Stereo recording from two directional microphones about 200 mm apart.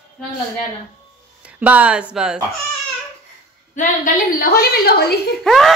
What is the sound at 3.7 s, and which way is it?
A woman's voice, 45° left (ahead or behind).